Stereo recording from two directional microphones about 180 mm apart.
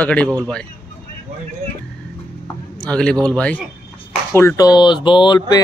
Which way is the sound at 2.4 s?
5° left (ahead or behind).